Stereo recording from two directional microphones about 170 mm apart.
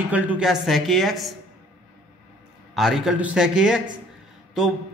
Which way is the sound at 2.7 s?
Centre (ahead or behind).